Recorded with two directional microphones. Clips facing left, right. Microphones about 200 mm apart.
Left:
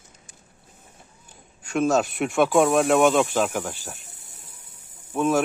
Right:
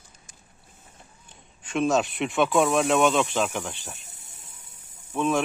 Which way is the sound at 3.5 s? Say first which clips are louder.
Left 3 dB; centre (ahead or behind).